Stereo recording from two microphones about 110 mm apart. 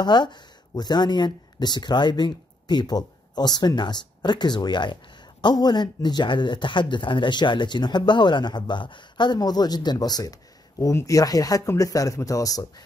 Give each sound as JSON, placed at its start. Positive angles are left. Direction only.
{"t": 0.0, "sound": "speech", "side_deg": 40}